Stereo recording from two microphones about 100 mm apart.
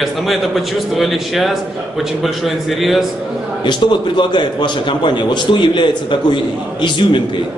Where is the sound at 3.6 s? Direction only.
50° left (ahead or behind).